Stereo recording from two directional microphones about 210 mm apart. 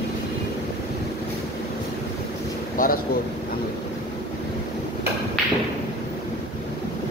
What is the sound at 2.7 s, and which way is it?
Speech, 40° left (ahead or behind).